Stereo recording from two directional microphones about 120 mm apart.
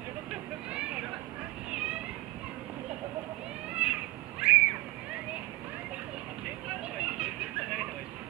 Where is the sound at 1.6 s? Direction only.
10° right (ahead or behind).